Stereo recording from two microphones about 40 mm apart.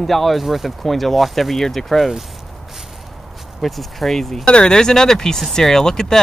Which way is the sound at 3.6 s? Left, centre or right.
Centre.